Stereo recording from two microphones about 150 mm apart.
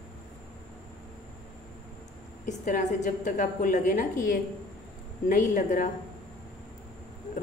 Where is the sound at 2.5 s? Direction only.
55° left (ahead or behind).